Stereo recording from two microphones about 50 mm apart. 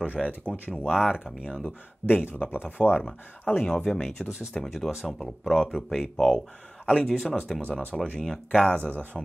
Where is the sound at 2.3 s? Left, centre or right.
Left.